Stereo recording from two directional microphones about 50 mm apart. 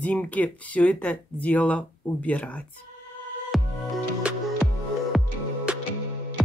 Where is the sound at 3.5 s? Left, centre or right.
Centre.